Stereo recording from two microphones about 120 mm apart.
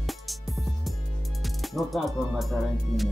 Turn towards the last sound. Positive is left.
turn(degrees=0)  # may be behind; listen again after turning